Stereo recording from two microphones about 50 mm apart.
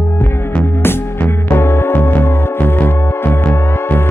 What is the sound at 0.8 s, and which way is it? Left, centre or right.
Music, left.